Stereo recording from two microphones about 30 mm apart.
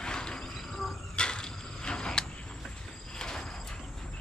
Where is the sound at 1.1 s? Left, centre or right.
Left.